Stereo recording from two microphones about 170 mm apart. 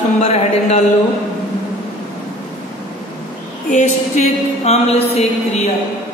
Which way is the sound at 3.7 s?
45° left (ahead or behind).